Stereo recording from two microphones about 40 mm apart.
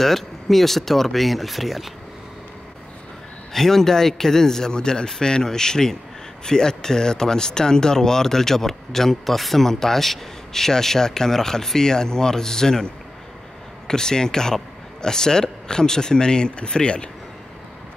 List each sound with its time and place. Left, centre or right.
0.0 s speech: centre
3.5 s speech: centre